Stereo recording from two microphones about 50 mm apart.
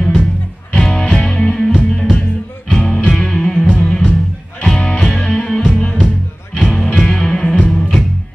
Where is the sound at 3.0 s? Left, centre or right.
Centre.